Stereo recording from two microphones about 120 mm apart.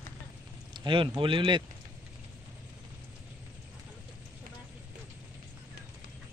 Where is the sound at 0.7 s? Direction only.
40° right (ahead or behind).